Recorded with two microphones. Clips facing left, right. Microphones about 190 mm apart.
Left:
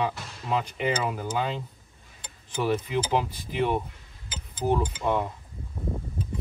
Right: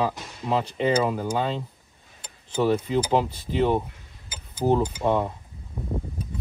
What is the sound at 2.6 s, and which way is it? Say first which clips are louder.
Speech: right 3 dB; 30° right (ahead or behind).